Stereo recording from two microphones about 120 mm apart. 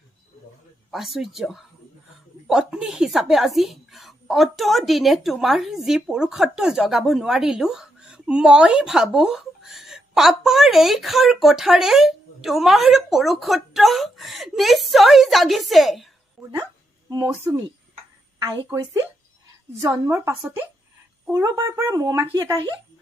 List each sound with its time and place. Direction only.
0.9 s a woman's voice: centre (ahead or behind)
16.4 s dog: 5° right (ahead or behind)
17.2 s a woman's voice: 20° right (ahead or behind)
19.8 s a woman's voice: 20° right (ahead or behind)